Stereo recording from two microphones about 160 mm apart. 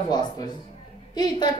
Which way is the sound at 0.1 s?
25° left (ahead or behind).